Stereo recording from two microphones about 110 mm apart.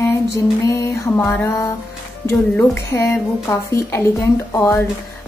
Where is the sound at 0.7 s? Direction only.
30° left (ahead or behind).